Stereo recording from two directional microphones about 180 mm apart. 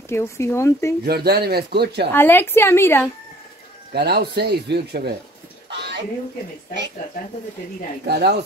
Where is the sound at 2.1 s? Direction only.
10° left (ahead or behind).